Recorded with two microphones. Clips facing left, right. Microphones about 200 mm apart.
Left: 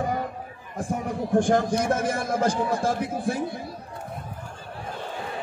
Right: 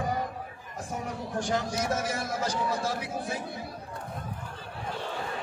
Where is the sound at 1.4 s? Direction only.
50° left (ahead or behind).